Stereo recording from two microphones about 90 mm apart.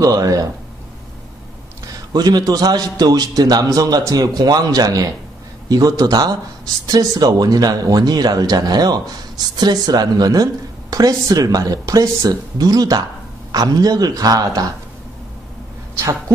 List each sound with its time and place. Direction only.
0.0 s speech: 40° right (ahead or behind)
2.1 s speech: 45° right (ahead or behind)